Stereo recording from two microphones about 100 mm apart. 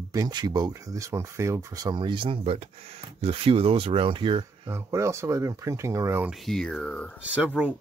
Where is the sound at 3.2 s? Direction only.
65° right (ahead or behind).